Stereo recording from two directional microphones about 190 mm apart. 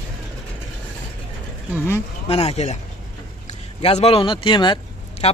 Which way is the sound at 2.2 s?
30° left (ahead or behind).